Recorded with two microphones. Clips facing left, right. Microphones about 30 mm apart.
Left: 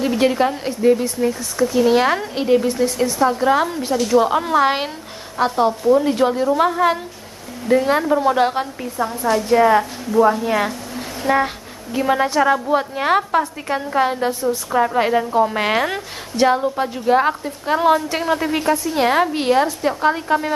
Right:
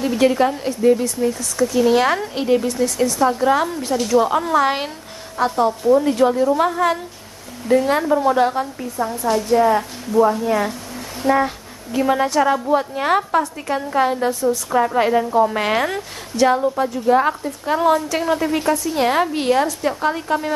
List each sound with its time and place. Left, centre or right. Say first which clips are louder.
0.0 s a woman's voice: right 1 dB; centre
8.4 s a woman's voice: even; left
11.2 s a woman's voice: right 1 dB; left
11.9 s a woman's voice: even; centre